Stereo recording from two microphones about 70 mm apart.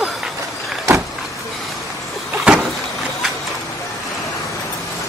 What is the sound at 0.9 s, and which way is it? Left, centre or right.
Vehicle, right.